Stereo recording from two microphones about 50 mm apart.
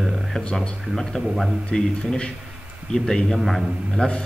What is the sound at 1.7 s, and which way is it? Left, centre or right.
A man's voice, centre.